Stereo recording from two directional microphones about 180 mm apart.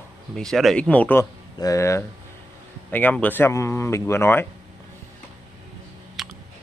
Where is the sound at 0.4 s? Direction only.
Centre (ahead or behind).